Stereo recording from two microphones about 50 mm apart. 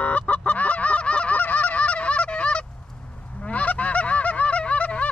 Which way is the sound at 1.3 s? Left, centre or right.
Left.